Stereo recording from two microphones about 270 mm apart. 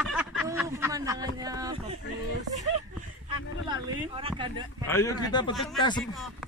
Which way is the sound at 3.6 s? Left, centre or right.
Centre.